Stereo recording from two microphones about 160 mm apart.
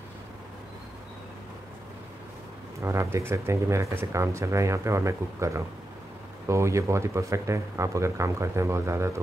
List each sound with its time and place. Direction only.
2.8 s speech: 15° right (ahead or behind)